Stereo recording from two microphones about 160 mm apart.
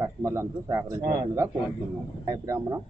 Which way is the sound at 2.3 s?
20° right (ahead or behind).